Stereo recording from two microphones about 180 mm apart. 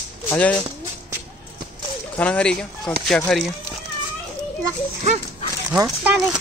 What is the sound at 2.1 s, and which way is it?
Speech, 5° left (ahead or behind).